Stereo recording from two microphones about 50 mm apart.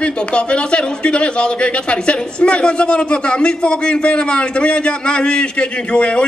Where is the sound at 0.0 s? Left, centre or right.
Left.